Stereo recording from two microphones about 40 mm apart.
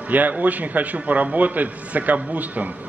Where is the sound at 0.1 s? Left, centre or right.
Right.